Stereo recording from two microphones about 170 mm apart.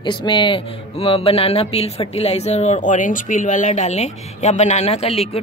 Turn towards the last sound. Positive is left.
turn(degrees=35)  # may be behind; listen again after turning